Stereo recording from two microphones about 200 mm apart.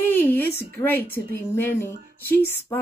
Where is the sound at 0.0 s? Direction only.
10° left (ahead or behind).